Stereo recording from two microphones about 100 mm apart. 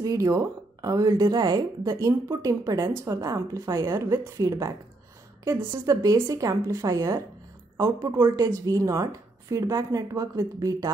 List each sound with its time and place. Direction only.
0.0 s a woman's voice: 35° right (ahead or behind)